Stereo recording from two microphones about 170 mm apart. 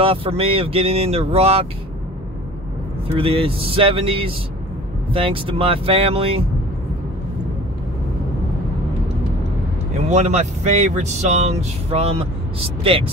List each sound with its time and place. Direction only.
0.0 s speech: 35° right (ahead or behind)
3.2 s speech: 35° right (ahead or behind)
10.0 s speech: 45° right (ahead or behind)